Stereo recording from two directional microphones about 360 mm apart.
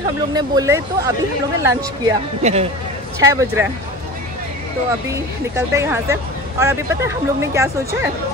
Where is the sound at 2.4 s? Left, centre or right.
Centre.